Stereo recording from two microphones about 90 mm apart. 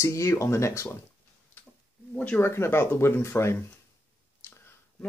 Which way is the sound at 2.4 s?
30° left (ahead or behind).